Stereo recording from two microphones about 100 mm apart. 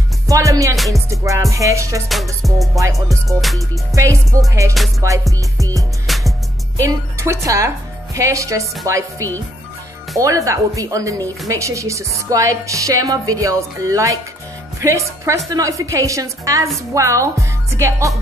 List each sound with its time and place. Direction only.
0.3 s speech: 35° right (ahead or behind)
2.4 s music: centre (ahead or behind)
3.9 s speech: 30° right (ahead or behind)
6.0 s music: centre (ahead or behind)
6.8 s a woman's voice: 30° right (ahead or behind)